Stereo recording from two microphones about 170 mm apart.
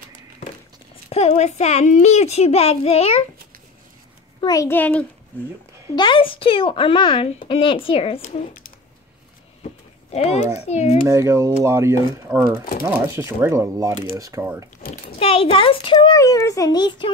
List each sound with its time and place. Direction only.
1.1 s a child's voice: 40° left (ahead or behind)
4.4 s a child's voice: 20° left (ahead or behind)
5.9 s a child's voice: 30° left (ahead or behind)
10.1 s a child's voice: 40° left (ahead or behind)
11.1 s speech: 15° right (ahead or behind)
15.1 s a child's voice: 35° left (ahead or behind)